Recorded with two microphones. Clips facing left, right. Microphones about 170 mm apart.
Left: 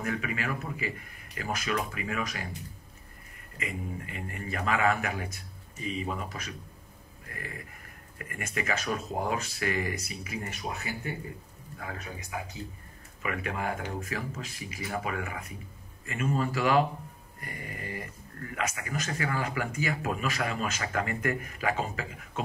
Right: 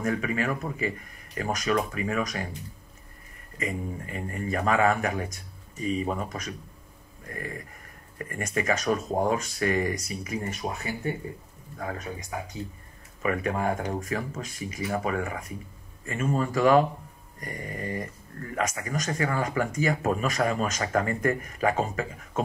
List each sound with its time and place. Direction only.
0.0 s speech: 40° right (ahead or behind)
3.5 s speech: 35° right (ahead or behind)